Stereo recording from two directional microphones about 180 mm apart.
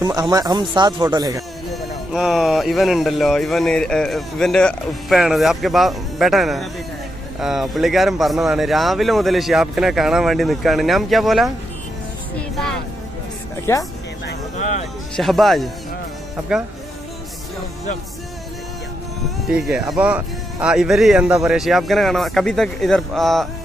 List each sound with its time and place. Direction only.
0.0 s speech: 20° right (ahead or behind)
1.7 s speech: centre (ahead or behind)
12.4 s music: 5° left (ahead or behind)
13.7 s speech: 15° left (ahead or behind)
15.1 s speech: centre (ahead or behind)
19.5 s speech: centre (ahead or behind)